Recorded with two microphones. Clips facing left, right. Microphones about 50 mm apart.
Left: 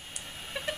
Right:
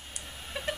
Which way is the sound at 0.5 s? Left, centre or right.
Centre.